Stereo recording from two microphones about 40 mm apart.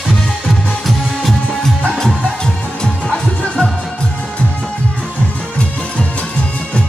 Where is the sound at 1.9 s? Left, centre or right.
Centre.